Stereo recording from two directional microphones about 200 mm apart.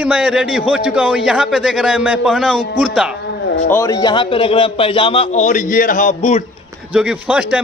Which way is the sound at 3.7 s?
15° left (ahead or behind).